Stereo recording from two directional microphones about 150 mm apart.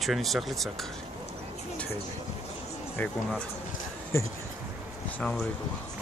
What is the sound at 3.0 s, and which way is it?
Speech, 10° left (ahead or behind).